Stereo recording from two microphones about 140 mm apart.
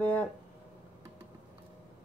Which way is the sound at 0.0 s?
10° left (ahead or behind).